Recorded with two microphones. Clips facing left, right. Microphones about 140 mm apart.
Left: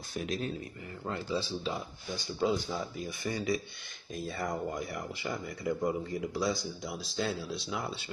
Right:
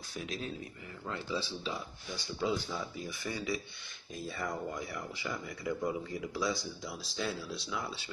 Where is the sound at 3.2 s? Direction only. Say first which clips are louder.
Left 5 dB; 45° left (ahead or behind).